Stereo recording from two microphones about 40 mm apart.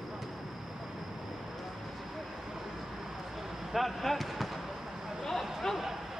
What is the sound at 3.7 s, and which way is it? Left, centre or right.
Speech, centre.